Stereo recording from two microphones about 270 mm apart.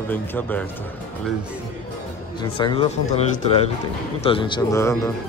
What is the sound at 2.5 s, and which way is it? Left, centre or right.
Speech, centre.